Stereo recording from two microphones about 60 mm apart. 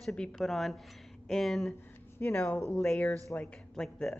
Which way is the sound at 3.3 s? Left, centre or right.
Left.